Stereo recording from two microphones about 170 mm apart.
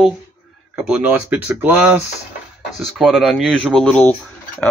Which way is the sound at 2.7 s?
Centre (ahead or behind).